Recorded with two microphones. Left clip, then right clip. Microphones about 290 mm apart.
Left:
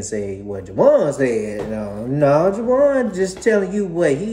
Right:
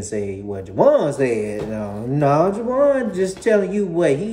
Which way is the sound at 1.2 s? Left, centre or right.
Centre.